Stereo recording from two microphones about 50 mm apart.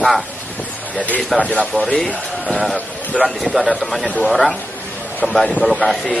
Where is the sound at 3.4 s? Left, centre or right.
Centre.